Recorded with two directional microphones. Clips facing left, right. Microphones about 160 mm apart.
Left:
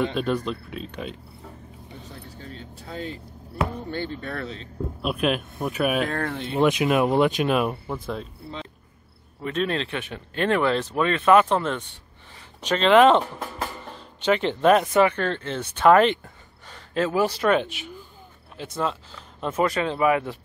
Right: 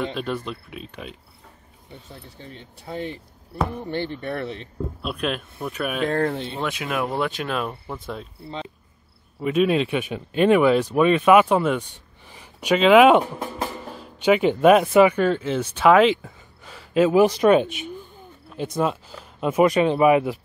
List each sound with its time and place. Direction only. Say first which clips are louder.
0.0 s speech: left 3 dB; centre (ahead or behind)
2.2 s speech: left 2 dB; 25° right (ahead or behind)
5.0 s speech: left 4 dB; 5° left (ahead or behind)
6.0 s speech: right 5 dB; 25° right (ahead or behind)
6.6 s speech: left 8 dB; 20° left (ahead or behind)
7.9 s speech: left 2 dB; centre (ahead or behind)
9.4 s speech: right 6 dB; 10° right (ahead or behind)